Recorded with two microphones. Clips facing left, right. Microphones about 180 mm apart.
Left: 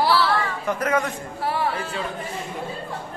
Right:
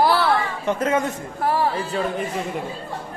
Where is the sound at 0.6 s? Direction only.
25° right (ahead or behind).